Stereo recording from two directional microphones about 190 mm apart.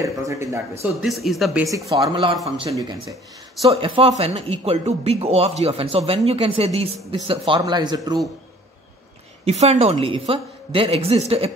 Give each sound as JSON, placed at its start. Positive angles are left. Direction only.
{"t": 0.0, "sound": "speech", "side_deg": -15}
{"t": 1.0, "sound": "speech", "side_deg": 0}
{"t": 1.7, "sound": "speech", "side_deg": -15}
{"t": 2.3, "sound": "speech", "side_deg": 0}
{"t": 2.7, "sound": "a woman's voice", "side_deg": -20}
{"t": 9.4, "sound": "a woman's voice", "side_deg": -35}